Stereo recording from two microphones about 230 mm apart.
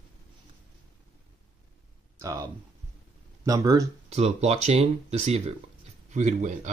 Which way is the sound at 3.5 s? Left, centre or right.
Centre.